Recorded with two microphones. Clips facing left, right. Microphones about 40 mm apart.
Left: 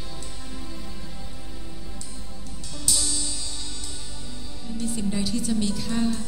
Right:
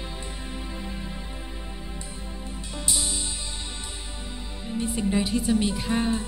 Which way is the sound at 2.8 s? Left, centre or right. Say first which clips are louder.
Left 1 dB; right.